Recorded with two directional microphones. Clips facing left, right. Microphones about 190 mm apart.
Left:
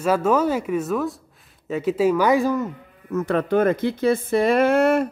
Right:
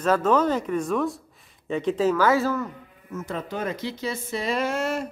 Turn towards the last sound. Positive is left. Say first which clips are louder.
# left 9 dB
turn(degrees=60)  # may be behind; listen again after turning